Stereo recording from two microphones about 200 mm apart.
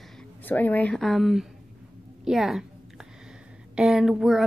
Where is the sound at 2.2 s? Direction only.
Centre (ahead or behind).